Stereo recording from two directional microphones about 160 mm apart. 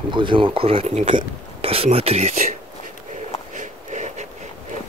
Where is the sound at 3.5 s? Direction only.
45° right (ahead or behind).